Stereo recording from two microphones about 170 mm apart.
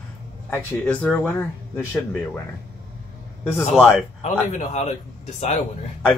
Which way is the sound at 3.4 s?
10° left (ahead or behind).